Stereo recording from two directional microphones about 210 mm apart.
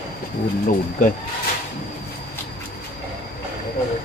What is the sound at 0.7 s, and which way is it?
Speech, 40° left (ahead or behind).